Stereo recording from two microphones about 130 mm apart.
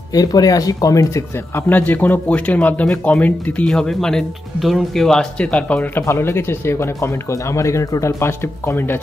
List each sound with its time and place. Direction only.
0.1 s speech: 30° left (ahead or behind)